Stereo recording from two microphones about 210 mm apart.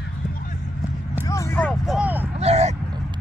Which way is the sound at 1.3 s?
15° left (ahead or behind).